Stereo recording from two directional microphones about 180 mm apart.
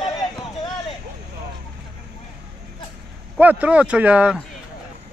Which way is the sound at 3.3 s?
10° right (ahead or behind).